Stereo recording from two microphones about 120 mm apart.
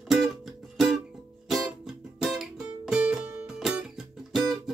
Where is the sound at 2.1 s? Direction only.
Centre (ahead or behind).